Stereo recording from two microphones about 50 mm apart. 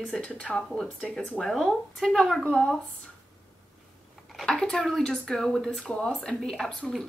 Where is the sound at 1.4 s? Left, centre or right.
Centre.